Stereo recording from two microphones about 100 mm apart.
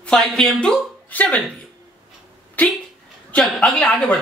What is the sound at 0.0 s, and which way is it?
Speech, 5° left (ahead or behind).